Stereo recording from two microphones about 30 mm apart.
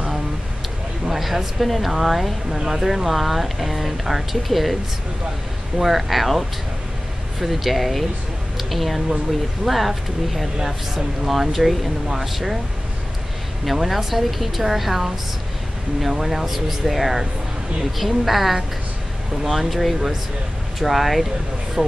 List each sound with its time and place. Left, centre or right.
1.1 s speech: centre
5.8 s speech: centre
13.8 s speech: centre
21.8 s speech: right